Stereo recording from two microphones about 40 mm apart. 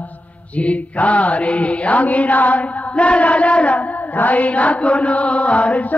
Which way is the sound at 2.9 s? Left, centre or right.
Left.